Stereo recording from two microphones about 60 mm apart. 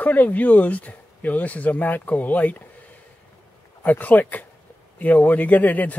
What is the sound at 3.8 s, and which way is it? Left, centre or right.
Speech, left.